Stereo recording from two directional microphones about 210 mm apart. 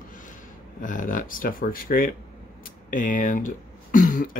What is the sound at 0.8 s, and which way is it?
Speech, 40° left (ahead or behind).